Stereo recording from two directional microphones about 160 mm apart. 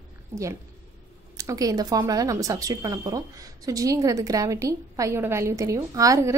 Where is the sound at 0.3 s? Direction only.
20° right (ahead or behind).